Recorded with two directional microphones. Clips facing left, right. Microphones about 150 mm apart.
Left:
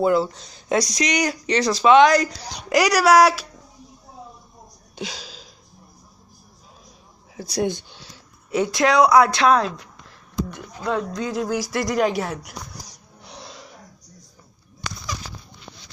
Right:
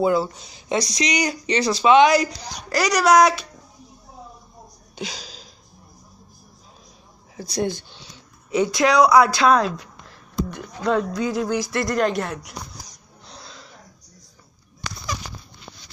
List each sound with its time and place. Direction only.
0.0 s speech: 5° right (ahead or behind)
2.7 s speech: 10° left (ahead or behind)
4.9 s a sound: centre (ahead or behind)
7.6 s speech: 20° left (ahead or behind)
8.1 s speech: centre (ahead or behind)
10.5 s speech: 10° left (ahead or behind)
11.0 s speech: 5° right (ahead or behind)
13.2 s a sound: 15° left (ahead or behind)